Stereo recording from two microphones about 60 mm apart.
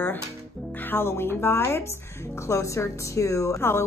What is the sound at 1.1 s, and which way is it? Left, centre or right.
Speech, left.